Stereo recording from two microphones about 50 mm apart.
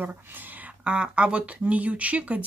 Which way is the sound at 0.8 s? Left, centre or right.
Centre.